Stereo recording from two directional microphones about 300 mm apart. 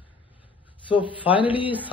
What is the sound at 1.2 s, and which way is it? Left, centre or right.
Speech, centre.